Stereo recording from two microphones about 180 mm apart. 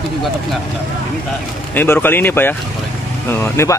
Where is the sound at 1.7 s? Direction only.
10° left (ahead or behind).